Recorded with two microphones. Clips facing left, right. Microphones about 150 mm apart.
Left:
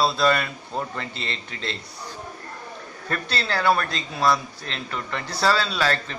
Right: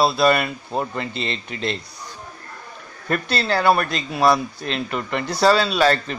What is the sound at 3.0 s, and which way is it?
Speech, 15° right (ahead or behind).